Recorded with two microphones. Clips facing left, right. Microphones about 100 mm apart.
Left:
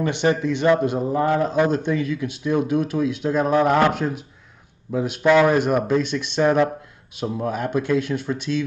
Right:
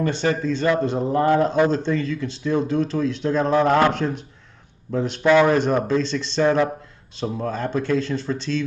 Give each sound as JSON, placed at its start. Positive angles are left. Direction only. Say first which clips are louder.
{"t": 0.0, "sound": "speech", "louder": "left 1 dB", "side_deg": 20}
{"t": 0.9, "sound": "a man's voice", "louder": "right 2 dB", "side_deg": 5}
{"t": 7.2, "sound": "a man's voice", "louder": "left 1 dB", "side_deg": 5}